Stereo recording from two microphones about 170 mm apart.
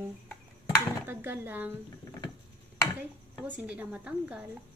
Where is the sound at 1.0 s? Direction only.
15° right (ahead or behind).